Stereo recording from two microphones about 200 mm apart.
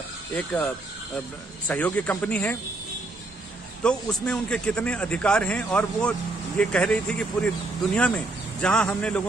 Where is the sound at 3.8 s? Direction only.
5° left (ahead or behind).